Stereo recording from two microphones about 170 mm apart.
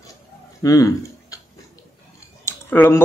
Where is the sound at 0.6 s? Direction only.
20° left (ahead or behind).